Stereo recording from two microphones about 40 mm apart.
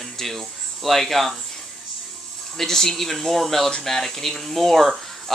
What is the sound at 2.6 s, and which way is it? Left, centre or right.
Speech, centre.